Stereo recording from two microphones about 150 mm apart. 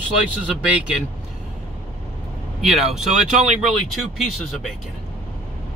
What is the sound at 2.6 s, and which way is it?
Speech, centre (ahead or behind).